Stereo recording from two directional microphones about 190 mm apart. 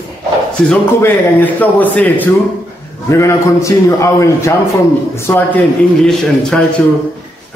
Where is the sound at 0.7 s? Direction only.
10° left (ahead or behind).